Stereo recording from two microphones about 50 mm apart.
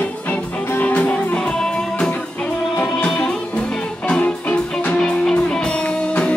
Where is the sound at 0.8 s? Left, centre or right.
Left.